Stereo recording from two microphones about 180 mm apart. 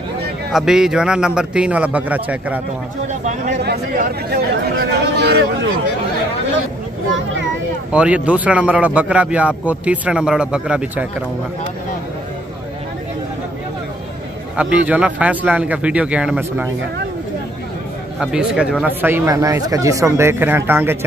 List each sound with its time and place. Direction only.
0.5 s a man's voice: 5° right (ahead or behind)
3.1 s speech: 40° right (ahead or behind)
3.6 s speech: 60° right (ahead or behind)
7.9 s a man's voice: 5° right (ahead or behind)
14.6 s a man's voice: 5° right (ahead or behind)
18.2 s a man's voice: 5° right (ahead or behind)